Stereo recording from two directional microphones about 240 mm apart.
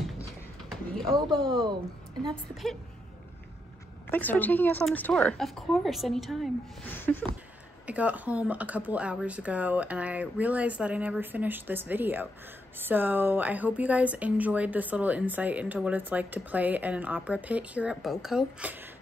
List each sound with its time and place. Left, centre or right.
0.7 s a sound: centre
1.3 s speech: right
2.5 s speech: centre
4.1 s a woman's voice: centre
7.8 s speech: centre